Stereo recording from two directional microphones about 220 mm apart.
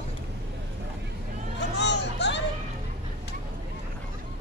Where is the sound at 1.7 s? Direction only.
50° left (ahead or behind).